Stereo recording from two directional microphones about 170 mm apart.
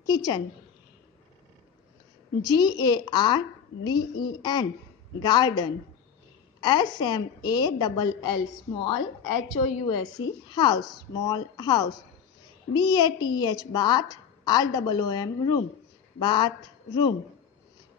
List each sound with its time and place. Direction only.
0.0 s a woman's voice: 25° left (ahead or behind)
2.4 s a woman's voice: 25° left (ahead or behind)
9.5 s a woman's voice: 25° left (ahead or behind)